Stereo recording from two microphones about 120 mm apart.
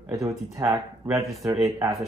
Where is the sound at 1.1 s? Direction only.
Centre (ahead or behind).